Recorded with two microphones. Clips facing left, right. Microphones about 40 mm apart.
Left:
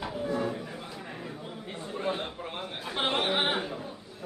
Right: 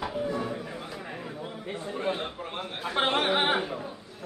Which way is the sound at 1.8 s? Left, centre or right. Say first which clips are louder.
Right 1 dB; centre.